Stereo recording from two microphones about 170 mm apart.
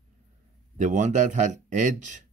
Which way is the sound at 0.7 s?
45° right (ahead or behind).